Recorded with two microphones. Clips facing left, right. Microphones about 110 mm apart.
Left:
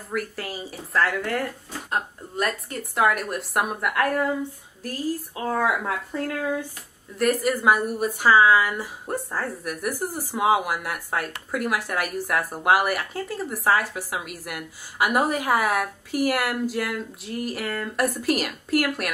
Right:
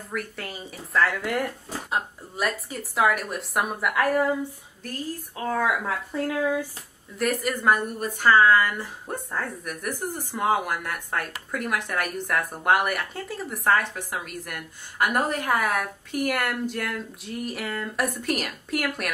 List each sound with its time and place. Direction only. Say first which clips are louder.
0.1 s speech: left 4 dB; centre (ahead or behind)
1.2 s speech: even; 15° right (ahead or behind)
1.9 s speech: left 1 dB; centre (ahead or behind)